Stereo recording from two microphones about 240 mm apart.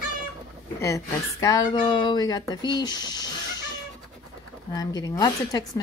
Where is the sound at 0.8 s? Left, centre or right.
Centre.